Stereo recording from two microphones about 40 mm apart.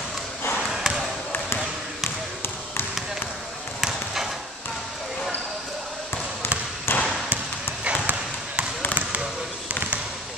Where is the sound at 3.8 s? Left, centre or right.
Centre.